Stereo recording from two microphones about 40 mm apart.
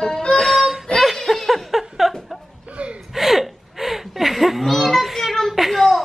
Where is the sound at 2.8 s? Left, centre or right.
Right.